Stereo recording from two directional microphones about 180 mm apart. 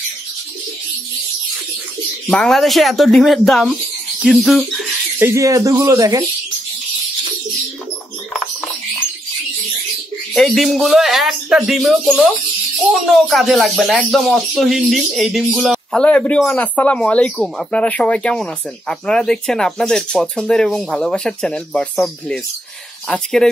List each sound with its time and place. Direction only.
2.2 s speech: centre (ahead or behind)
5.2 s speech: 15° right (ahead or behind)
10.3 s speech: centre (ahead or behind)